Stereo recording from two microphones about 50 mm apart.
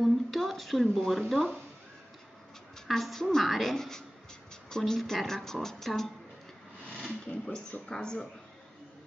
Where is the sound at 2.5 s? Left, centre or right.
Centre.